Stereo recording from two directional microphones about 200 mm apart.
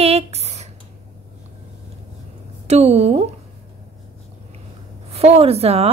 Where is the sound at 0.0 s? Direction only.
30° right (ahead or behind).